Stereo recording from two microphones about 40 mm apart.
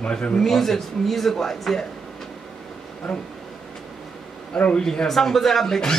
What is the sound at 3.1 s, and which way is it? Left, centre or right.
Speech, centre.